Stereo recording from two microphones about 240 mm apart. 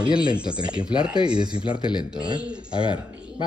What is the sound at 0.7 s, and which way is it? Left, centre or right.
Speech, centre.